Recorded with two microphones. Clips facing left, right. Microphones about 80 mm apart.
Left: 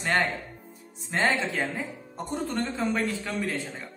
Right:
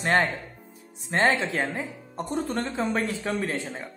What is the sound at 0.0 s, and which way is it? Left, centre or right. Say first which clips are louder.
Speech: right 3 dB; right.